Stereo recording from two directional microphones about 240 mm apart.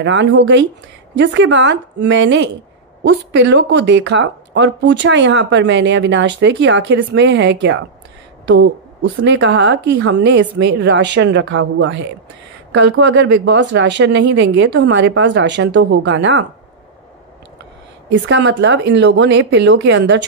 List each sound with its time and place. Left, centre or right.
0.0 s speech: right
9.2 s speech: right
18.1 s speech: right